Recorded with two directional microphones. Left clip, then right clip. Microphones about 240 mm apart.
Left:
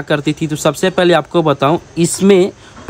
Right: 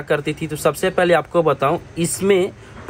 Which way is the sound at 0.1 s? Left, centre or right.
Left.